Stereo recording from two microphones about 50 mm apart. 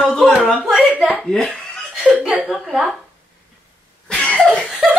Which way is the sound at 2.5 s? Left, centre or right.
Centre.